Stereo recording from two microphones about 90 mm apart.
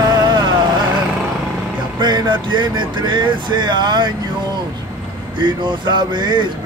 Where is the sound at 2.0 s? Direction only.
55° right (ahead or behind).